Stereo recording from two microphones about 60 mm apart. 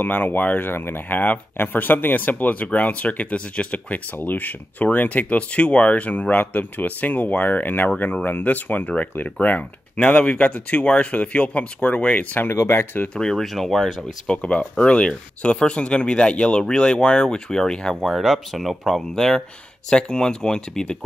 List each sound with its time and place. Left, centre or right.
0.0 s speech: left
12.4 s speech: left
13.1 s speech: centre
14.3 s speech: centre
18.0 s speech: centre